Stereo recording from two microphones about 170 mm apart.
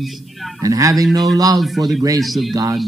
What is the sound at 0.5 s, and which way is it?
Speech, 20° right (ahead or behind).